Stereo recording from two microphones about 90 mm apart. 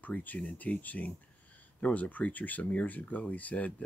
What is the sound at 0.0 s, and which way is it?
Speech, 20° left (ahead or behind).